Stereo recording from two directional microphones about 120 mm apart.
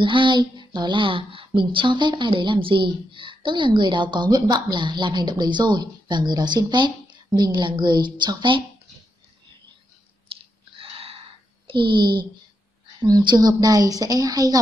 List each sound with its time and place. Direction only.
0.0 s speech: 45° right (ahead or behind)
10.3 s a sound: 50° right (ahead or behind)
11.6 s speech: 45° right (ahead or behind)